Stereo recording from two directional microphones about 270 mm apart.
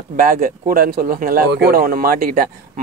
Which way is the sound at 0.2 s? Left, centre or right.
Right.